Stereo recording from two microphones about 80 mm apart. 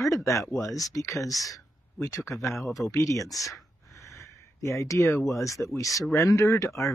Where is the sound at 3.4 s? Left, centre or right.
Left.